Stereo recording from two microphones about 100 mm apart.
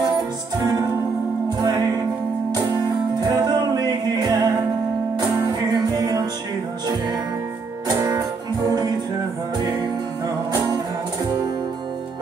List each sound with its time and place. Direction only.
0.6 s music: 35° right (ahead or behind)
8.6 s music: 40° right (ahead or behind)